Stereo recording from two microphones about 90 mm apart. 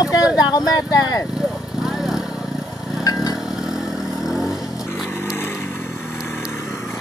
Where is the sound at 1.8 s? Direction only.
5° right (ahead or behind).